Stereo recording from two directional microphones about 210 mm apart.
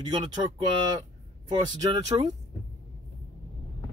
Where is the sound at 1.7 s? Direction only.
20° right (ahead or behind).